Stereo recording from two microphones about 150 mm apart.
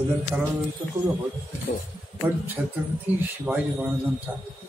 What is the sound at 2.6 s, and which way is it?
Speech, 10° right (ahead or behind).